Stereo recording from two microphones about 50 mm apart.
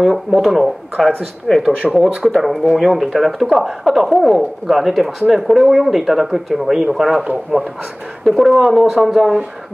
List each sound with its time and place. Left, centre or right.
0.0 s speech: centre
1.6 s speech: centre
2.0 s speech: centre